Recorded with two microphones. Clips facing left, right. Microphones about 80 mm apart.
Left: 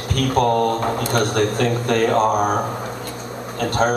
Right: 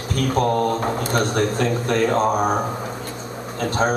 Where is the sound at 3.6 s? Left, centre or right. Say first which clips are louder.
Left 2 dB; left.